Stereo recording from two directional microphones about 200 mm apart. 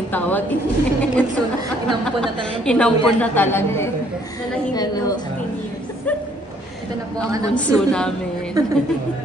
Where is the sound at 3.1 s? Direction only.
10° left (ahead or behind).